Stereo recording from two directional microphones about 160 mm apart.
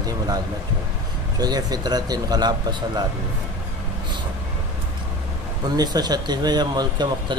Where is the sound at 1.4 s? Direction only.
25° right (ahead or behind).